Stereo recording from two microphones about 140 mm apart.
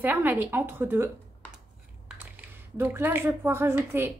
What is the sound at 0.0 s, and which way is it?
Speech, 15° right (ahead or behind).